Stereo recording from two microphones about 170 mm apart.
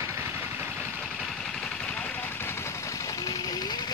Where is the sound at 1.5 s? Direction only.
5° left (ahead or behind).